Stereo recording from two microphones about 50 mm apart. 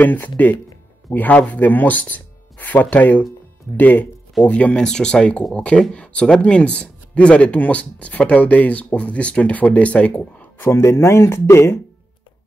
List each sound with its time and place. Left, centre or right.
0.0 s speech: left
4.8 s speech: centre
10.7 s speech: left